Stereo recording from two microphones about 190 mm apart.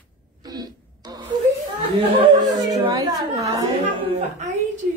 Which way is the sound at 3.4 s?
20° right (ahead or behind).